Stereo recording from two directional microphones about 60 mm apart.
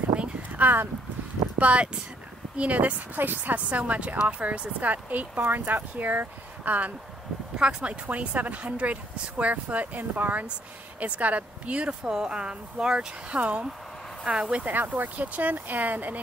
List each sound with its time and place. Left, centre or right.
0.1 s a sound: right
1.6 s speech: right
14.2 s speech: centre
14.7 s speech: right